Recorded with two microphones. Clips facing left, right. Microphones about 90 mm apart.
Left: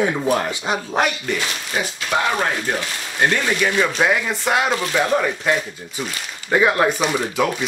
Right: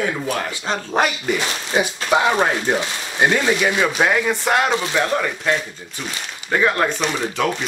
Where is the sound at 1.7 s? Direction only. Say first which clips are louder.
Right 4 dB; 25° right (ahead or behind); by 7.4 s 5° left (ahead or behind).